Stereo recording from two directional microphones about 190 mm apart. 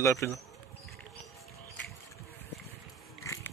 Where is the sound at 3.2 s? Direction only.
15° left (ahead or behind).